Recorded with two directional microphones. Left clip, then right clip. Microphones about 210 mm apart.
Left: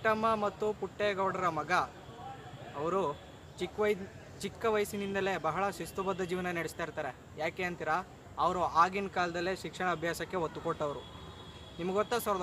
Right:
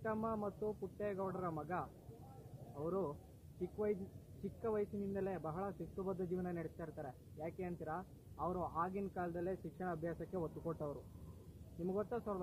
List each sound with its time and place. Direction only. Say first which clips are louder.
0.0 s speech: left 12 dB; 10° left (ahead or behind)
4.6 s speech: left 9 dB; 10° left (ahead or behind)
11.9 s speech: left 11 dB; 10° left (ahead or behind)